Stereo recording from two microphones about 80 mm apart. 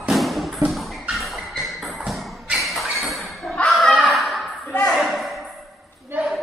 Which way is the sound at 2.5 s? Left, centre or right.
Centre.